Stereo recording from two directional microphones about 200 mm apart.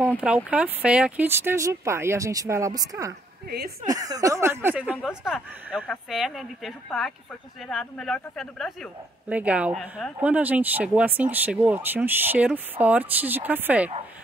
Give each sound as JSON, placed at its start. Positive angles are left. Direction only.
{"t": 0.5, "sound": "speech", "side_deg": -5}
{"t": 3.4, "sound": "a woman's voice", "side_deg": -50}
{"t": 3.9, "sound": "speech", "side_deg": -20}